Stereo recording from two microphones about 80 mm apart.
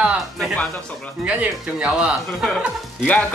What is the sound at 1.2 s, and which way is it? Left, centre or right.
Speech, centre.